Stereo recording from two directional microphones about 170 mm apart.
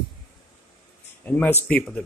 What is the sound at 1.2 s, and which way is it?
Speech, 10° left (ahead or behind).